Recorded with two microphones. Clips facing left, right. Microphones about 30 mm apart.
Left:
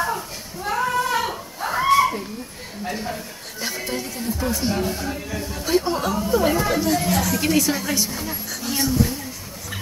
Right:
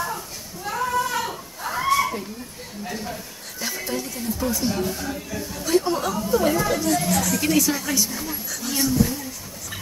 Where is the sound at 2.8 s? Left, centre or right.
Centre.